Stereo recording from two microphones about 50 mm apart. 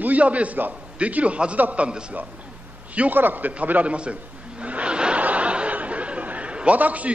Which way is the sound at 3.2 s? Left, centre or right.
Right.